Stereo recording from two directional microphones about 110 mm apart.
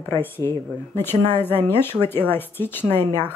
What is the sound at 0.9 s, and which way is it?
Speech, 20° left (ahead or behind).